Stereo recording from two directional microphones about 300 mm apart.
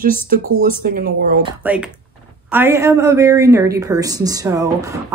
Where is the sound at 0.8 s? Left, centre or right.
Right.